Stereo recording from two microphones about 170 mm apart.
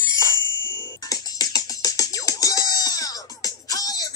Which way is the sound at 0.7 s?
15° left (ahead or behind).